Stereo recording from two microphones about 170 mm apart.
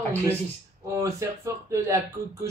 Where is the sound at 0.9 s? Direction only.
15° right (ahead or behind).